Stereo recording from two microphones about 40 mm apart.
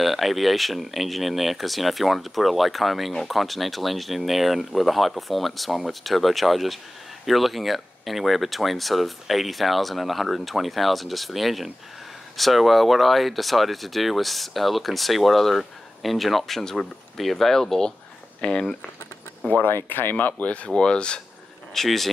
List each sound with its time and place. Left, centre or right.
0.0 s speech: centre; by 18.9 s left
19.6 s speech: left
20.4 s speech: left
21.7 s speech: centre